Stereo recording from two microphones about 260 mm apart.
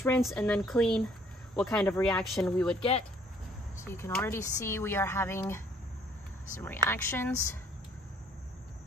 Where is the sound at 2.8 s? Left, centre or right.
Left.